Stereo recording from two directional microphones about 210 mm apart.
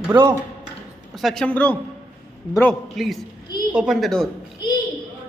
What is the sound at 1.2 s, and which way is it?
Speech, 5° left (ahead or behind).